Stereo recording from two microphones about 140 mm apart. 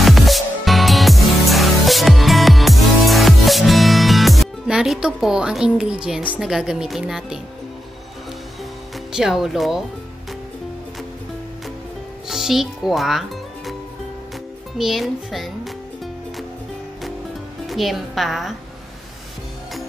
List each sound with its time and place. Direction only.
0.0 s music: centre (ahead or behind)
8.9 s speech: centre (ahead or behind)
12.3 s a child's voice: centre (ahead or behind)
14.8 s a child's voice: centre (ahead or behind)
17.6 s a child's voice: centre (ahead or behind)